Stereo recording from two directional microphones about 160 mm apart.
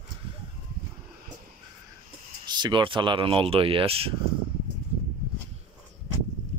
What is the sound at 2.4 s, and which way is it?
Speech, 25° right (ahead or behind).